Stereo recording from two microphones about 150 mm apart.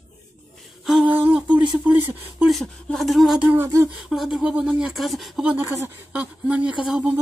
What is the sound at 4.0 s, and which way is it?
Speech, 5° right (ahead or behind).